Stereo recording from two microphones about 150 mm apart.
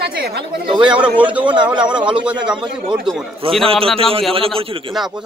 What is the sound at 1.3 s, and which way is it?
A man's voice, 10° right (ahead or behind).